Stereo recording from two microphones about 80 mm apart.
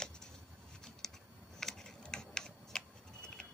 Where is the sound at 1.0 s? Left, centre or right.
Centre.